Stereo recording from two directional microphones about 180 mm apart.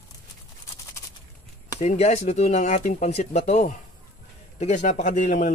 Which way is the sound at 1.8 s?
40° left (ahead or behind).